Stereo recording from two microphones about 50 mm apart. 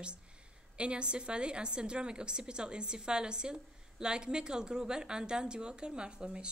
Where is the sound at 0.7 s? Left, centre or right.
Right.